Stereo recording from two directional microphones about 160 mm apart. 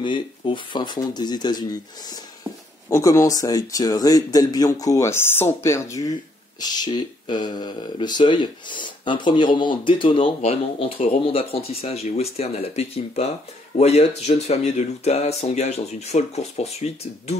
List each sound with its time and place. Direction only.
0.0 s speech: 30° left (ahead or behind)